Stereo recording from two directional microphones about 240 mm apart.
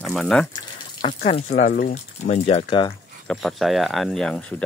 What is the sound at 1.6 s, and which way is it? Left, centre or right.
Speech, left.